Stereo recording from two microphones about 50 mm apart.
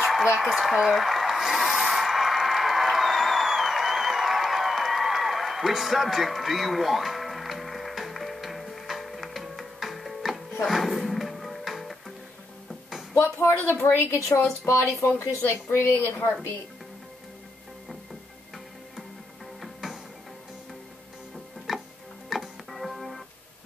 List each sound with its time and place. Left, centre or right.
0.4 s speech: centre
0.9 s a sound: centre
10.6 s music: centre
13.1 s a woman's voice: left
19.6 s music: centre
21.7 s tick-tock: centre
22.3 s music: centre